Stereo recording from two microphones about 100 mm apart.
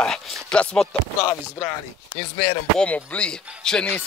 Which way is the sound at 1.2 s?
30° left (ahead or behind).